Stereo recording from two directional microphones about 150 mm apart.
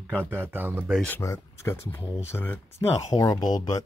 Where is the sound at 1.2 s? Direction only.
20° left (ahead or behind).